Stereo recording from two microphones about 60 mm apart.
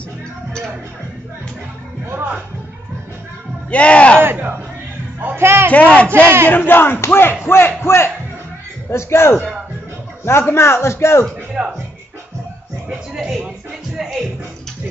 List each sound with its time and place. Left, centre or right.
2.0 s speech: right
3.7 s speech: left
4.2 s speech: right
5.7 s speech: left
6.5 s a man's voice: left
11.6 s speech: centre
13.1 s speech: centre